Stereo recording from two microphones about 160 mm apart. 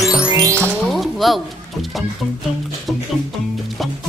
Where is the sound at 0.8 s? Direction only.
Centre (ahead or behind).